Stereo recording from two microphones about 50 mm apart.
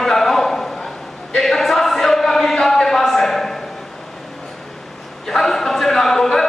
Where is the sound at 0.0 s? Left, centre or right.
Centre.